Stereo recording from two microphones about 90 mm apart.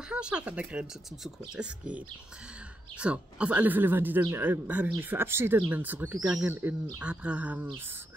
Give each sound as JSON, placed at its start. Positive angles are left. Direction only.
{"t": 0.1, "sound": "speech", "side_deg": -10}